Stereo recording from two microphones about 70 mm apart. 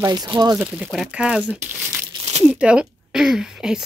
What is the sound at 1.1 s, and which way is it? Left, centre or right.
Speech, centre.